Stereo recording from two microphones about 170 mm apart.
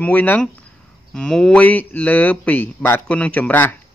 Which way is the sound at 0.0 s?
10° left (ahead or behind).